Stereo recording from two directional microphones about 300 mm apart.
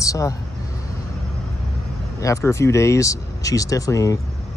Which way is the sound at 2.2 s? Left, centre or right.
Centre.